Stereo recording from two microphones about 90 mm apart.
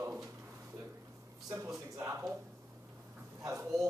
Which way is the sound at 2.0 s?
30° right (ahead or behind).